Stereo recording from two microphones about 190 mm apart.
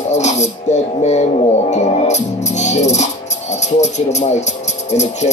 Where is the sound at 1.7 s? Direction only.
35° left (ahead or behind).